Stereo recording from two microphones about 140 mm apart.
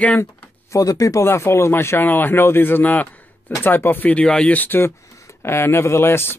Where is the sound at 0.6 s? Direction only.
25° left (ahead or behind).